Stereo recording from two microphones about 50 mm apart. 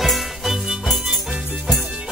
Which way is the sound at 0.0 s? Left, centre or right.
Centre.